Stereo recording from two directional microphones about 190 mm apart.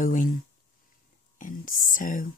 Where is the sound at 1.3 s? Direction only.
45° left (ahead or behind).